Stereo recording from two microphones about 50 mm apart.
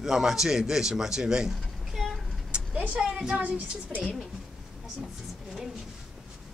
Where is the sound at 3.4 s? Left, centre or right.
Right.